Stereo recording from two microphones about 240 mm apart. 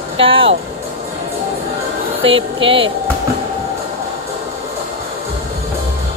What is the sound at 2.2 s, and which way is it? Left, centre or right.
Speech, right.